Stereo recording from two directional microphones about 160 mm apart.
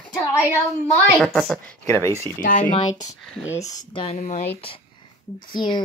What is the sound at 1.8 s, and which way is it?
Speech, 15° left (ahead or behind).